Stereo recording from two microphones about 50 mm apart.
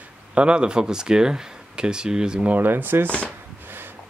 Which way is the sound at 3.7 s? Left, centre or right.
Right.